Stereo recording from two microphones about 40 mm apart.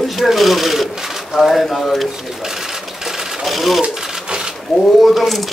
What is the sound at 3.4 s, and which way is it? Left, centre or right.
Sewing machine, centre.